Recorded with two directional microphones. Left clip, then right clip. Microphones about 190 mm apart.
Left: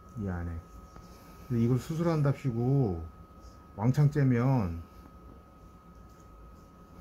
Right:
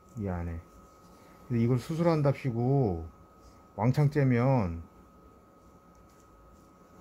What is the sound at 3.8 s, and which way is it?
Speech, 35° right (ahead or behind).